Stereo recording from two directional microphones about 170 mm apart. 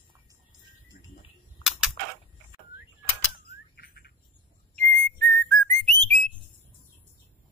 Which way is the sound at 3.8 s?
65° left (ahead or behind).